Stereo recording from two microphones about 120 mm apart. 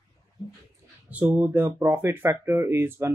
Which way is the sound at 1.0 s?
10° right (ahead or behind).